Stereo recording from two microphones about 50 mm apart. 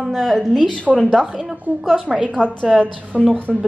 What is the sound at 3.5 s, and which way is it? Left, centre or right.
Speech, centre.